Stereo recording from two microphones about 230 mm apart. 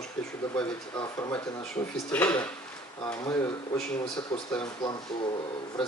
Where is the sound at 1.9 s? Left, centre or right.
Centre.